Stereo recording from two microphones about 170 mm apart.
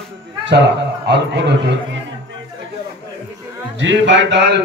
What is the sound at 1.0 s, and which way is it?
Speech, 90° right.